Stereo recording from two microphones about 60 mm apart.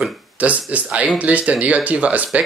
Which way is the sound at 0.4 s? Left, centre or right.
Right.